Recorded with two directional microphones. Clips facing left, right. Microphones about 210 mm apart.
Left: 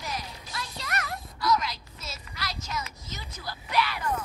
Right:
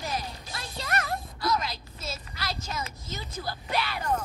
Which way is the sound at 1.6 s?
30° right (ahead or behind).